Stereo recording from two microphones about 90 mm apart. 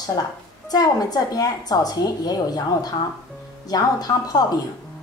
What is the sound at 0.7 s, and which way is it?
A woman's voice, 45° left (ahead or behind).